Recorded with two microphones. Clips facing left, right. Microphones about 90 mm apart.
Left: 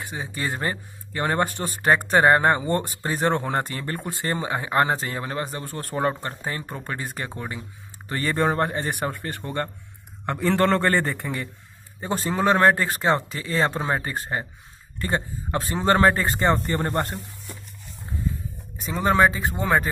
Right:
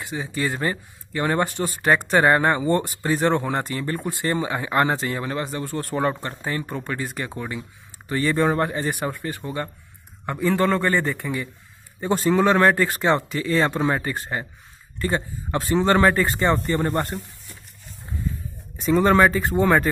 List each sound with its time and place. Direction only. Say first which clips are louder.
0.0 s a man's voice: right 3 dB; 35° left (ahead or behind)
3.5 s speech: right 1 dB; 40° left (ahead or behind)
4.0 s a man's voice: right 2 dB; 20° left (ahead or behind)
8.1 s a man's voice: right 3 dB; 45° left (ahead or behind)
12.0 s a man's voice: right 5 dB; 30° left (ahead or behind)
18.8 s speech: right 3 dB; 5° left (ahead or behind)